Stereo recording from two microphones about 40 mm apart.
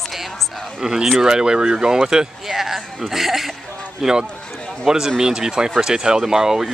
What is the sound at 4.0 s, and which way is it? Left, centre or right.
Speech, centre.